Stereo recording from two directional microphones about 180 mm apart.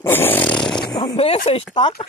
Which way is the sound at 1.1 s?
35° left (ahead or behind).